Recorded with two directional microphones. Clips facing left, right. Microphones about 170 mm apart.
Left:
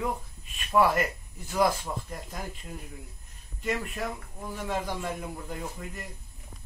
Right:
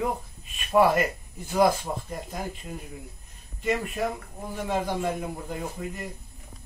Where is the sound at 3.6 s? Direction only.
10° right (ahead or behind).